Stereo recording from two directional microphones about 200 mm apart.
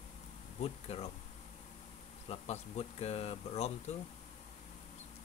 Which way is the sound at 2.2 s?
30° left (ahead or behind).